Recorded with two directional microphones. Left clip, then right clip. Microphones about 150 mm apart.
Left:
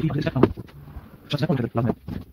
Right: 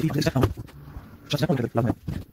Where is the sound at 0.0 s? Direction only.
25° right (ahead or behind).